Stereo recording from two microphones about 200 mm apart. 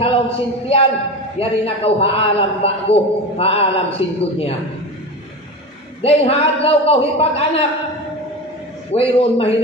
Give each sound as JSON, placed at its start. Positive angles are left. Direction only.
{"t": 0.0, "sound": "a man's voice", "side_deg": 30}
{"t": 6.0, "sound": "a man's voice", "side_deg": 30}
{"t": 8.9, "sound": "a man's voice", "side_deg": 30}